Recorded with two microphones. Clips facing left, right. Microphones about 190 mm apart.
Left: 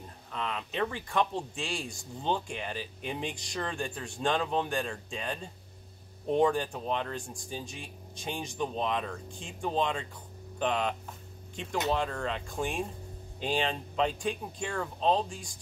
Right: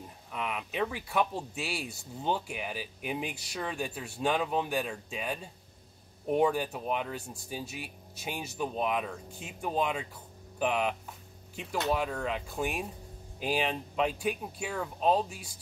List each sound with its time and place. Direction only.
0.3 s speech: 10° right (ahead or behind)